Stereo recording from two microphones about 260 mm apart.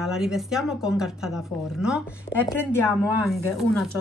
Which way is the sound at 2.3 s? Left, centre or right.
Left.